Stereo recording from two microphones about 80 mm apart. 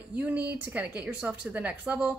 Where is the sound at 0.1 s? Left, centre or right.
Right.